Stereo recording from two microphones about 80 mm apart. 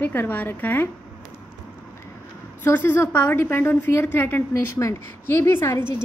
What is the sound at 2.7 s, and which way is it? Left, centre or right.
A woman's voice, left.